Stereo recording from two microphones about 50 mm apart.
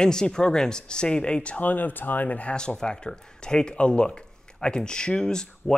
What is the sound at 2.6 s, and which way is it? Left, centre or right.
Speech, centre.